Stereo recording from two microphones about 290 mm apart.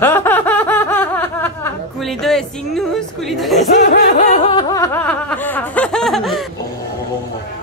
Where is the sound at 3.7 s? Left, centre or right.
Left; by 6.4 s centre.